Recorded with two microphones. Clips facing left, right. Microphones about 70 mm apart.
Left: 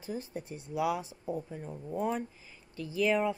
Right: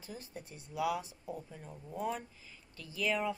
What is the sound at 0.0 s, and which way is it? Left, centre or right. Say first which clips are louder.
Speech: left 8 dB; left.